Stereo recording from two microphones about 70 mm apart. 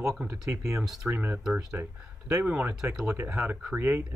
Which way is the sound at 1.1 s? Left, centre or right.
Right.